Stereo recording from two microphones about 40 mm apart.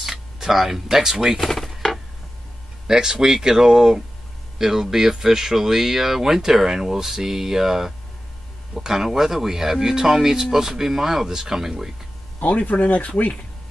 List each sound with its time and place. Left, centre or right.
0.0 s speech: centre
1.4 s chopping: centre
2.9 s speech: centre
12.4 s speech: left